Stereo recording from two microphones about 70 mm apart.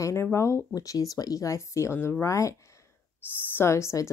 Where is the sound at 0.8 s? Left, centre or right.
Left.